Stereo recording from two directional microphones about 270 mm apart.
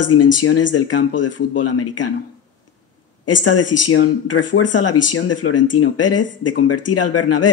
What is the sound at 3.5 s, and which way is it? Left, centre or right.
Speech, left.